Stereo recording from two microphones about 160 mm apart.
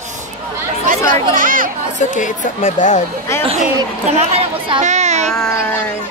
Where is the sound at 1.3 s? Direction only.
60° right (ahead or behind).